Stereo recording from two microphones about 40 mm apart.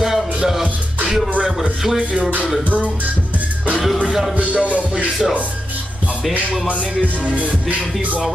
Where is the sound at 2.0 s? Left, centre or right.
Right.